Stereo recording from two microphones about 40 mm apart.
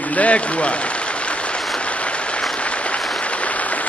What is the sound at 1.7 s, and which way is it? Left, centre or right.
Applause, left.